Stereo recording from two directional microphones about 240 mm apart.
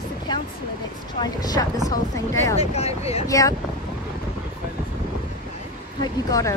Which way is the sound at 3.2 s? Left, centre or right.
Centre.